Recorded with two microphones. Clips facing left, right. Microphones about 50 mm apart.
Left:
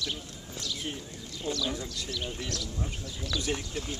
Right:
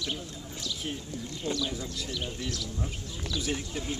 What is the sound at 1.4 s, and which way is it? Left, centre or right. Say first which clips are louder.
Speech: right 1 dB; right.